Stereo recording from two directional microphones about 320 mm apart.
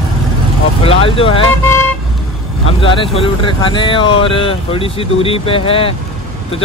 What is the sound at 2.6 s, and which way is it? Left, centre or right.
Speech, centre.